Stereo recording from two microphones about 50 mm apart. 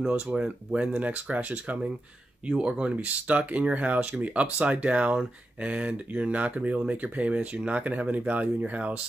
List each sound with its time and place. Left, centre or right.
0.1 s speech: right
2.4 s speech: centre